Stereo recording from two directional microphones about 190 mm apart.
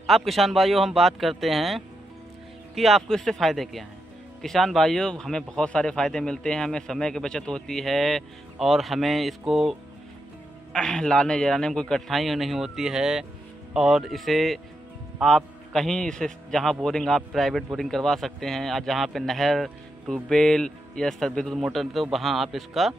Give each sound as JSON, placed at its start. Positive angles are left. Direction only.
{"t": 0.0, "sound": "a man's voice", "side_deg": 0}